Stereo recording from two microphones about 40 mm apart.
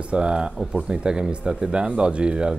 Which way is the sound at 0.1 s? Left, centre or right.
Right.